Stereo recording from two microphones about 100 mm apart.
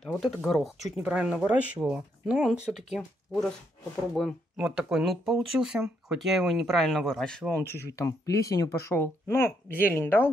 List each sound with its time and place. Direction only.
0.0 s speech: 5° left (ahead or behind)
1.0 s speech: 15° right (ahead or behind); by 4.4 s 10° left (ahead or behind)
4.6 s speech: 10° right (ahead or behind)
7.6 s speech: 30° left (ahead or behind)